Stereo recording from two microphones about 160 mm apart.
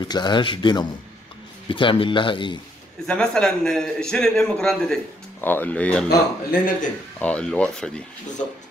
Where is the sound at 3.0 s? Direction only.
5° left (ahead or behind).